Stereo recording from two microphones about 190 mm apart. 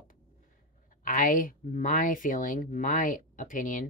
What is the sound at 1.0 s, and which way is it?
Speech, 45° left (ahead or behind).